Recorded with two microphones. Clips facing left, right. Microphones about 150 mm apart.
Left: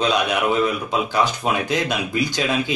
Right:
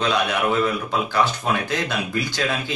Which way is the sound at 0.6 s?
15° left (ahead or behind).